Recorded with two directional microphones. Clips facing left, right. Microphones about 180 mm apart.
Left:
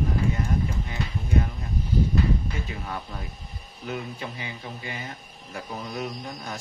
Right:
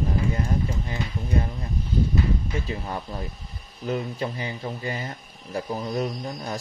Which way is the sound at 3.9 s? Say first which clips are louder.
Right 6 dB; 40° right (ahead or behind).